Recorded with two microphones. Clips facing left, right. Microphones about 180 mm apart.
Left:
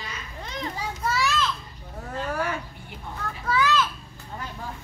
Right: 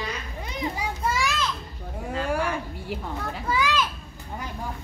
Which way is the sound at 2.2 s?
10° right (ahead or behind).